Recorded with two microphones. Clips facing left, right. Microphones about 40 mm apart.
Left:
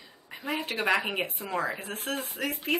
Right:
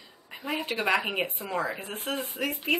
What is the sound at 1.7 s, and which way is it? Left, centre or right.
Speech, centre.